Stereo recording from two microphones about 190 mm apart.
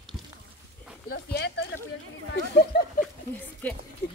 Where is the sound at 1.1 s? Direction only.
60° left (ahead or behind).